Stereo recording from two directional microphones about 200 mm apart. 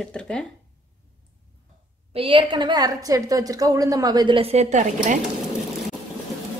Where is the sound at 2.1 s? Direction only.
25° right (ahead or behind).